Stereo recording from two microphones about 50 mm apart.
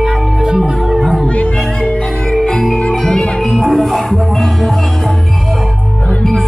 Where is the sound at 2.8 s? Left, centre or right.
Left.